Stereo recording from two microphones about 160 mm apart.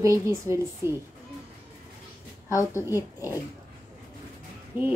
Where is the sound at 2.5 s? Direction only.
20° left (ahead or behind).